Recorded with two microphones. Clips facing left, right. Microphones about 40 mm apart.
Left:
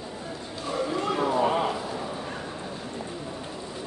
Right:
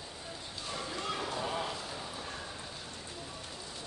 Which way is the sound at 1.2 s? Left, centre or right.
Left.